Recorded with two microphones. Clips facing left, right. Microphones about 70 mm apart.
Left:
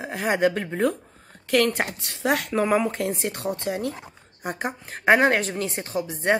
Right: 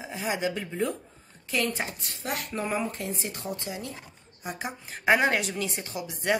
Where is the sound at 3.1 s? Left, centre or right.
Left.